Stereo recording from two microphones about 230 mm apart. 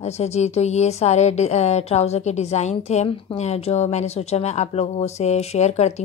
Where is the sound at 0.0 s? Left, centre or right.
Left.